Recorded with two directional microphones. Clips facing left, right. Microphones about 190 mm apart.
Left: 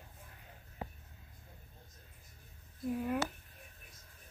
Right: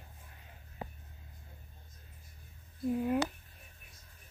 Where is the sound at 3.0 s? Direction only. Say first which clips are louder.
Right 4 dB; 20° right (ahead or behind).